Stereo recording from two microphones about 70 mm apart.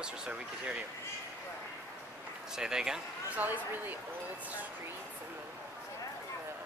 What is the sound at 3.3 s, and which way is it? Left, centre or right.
Speech, right.